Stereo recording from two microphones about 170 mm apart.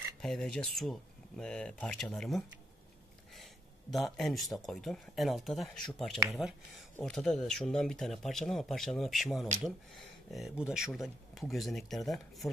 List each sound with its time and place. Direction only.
0.2 s speech: 5° left (ahead or behind)
3.9 s speech: centre (ahead or behind)